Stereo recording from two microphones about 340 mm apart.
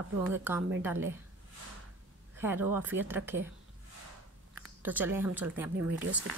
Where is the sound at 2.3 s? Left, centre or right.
Centre.